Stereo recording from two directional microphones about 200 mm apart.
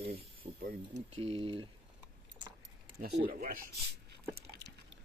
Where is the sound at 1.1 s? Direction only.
25° right (ahead or behind).